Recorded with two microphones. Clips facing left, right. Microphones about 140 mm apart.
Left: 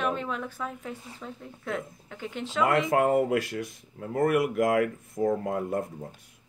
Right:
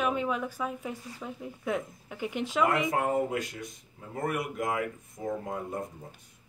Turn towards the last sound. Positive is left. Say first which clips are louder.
# left 6 dB
turn(degrees=65)  # may be behind; listen again after turning